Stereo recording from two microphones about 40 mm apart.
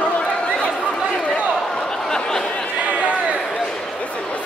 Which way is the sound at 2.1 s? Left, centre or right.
Centre.